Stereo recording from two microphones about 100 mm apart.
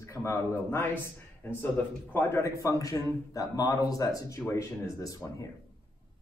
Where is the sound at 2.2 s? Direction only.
25° left (ahead or behind).